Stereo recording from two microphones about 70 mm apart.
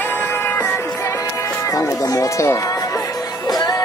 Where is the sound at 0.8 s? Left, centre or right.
Left.